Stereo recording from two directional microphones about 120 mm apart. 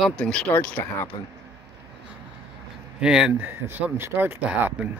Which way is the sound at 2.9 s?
5° right (ahead or behind).